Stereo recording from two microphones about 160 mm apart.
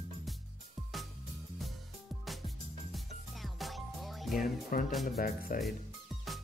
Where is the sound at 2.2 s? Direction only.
Centre (ahead or behind).